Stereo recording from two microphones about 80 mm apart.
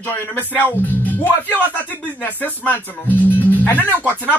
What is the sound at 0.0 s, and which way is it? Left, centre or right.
Speech, left.